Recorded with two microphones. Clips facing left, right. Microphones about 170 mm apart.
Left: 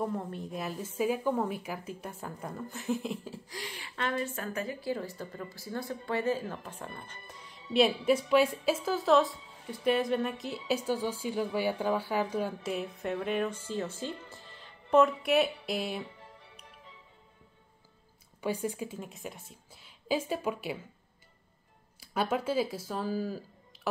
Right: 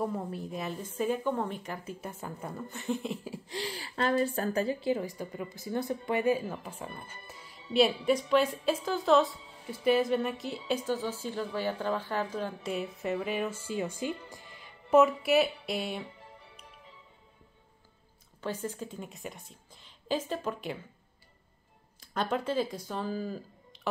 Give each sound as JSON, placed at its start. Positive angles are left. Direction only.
{"t": 0.0, "sound": "speech", "side_deg": -5}
{"t": 3.4, "sound": "a woman's voice", "side_deg": -30}
{"t": 10.9, "sound": "speech", "side_deg": 10}
{"t": 18.4, "sound": "a woman's voice", "side_deg": 10}
{"t": 22.0, "sound": "speech", "side_deg": 5}